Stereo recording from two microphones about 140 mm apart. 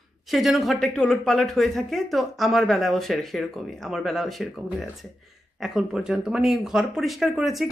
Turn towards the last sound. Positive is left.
turn(degrees=0)  # may be behind; listen again after turning